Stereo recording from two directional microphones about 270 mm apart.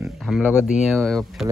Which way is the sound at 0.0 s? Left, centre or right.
Centre.